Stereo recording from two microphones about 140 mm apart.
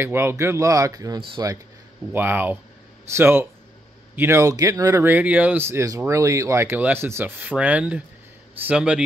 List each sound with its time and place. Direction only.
0.0 s speech: 15° right (ahead or behind)
2.1 s speech: 15° right (ahead or behind)